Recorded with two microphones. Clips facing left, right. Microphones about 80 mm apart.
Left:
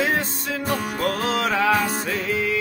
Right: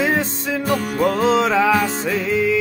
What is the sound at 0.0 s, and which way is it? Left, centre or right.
Music, centre.